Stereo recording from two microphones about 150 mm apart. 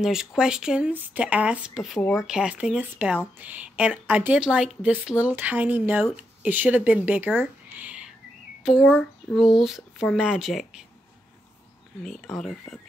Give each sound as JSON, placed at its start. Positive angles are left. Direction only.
{"t": 0.0, "sound": "speech", "side_deg": -5}
{"t": 12.0, "sound": "speech", "side_deg": 5}